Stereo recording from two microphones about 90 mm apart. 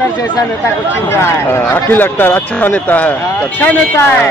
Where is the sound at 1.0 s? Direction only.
30° left (ahead or behind).